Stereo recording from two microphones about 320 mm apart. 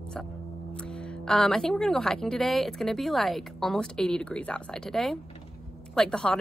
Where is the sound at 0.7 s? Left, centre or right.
Centre.